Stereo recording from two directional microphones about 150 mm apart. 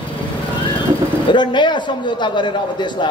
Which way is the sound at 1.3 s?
30° left (ahead or behind).